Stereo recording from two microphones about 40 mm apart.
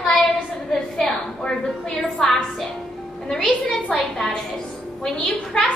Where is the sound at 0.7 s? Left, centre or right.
Centre.